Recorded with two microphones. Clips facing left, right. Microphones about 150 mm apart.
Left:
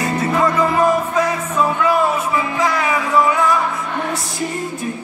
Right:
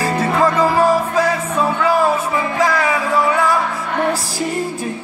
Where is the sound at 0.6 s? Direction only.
30° right (ahead or behind).